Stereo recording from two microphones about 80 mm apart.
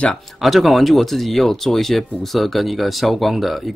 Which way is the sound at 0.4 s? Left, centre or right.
Centre.